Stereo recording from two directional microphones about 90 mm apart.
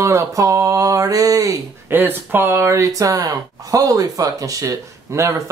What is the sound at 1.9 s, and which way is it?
Speech, 20° right (ahead or behind).